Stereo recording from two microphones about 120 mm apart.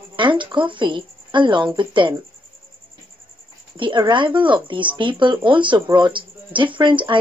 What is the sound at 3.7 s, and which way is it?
Speech, 45° right (ahead or behind).